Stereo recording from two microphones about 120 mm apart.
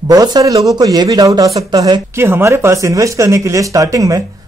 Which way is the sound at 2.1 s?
20° right (ahead or behind).